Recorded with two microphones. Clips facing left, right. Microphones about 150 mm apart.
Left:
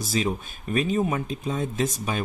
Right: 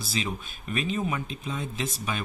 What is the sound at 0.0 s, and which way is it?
Speech, 45° left (ahead or behind).